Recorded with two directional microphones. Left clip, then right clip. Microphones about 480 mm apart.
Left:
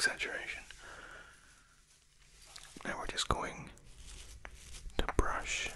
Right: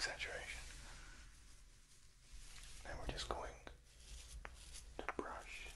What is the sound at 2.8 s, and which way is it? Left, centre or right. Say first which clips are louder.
Whispering: left 11 dB; left.